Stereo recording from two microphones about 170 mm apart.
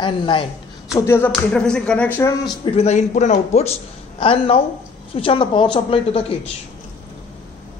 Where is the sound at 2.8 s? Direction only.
40° left (ahead or behind).